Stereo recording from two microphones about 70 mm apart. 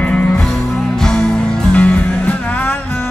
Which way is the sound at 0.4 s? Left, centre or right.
Centre.